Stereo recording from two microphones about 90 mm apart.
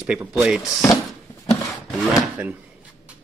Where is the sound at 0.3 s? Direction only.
10° right (ahead or behind).